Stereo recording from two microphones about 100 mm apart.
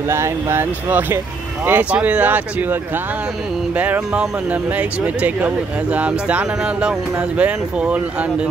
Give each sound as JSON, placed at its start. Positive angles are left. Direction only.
{"t": 0.1, "sound": "speech", "side_deg": -25}